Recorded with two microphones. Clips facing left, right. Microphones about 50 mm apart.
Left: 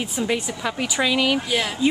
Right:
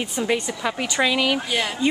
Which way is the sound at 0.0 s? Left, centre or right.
Centre.